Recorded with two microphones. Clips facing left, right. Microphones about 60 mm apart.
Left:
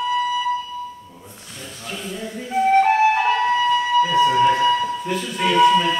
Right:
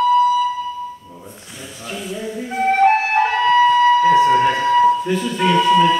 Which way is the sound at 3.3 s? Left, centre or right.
Right.